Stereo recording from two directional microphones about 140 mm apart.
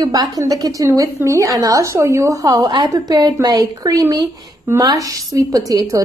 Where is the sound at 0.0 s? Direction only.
25° right (ahead or behind).